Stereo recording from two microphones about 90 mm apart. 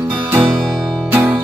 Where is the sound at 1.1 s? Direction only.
20° right (ahead or behind).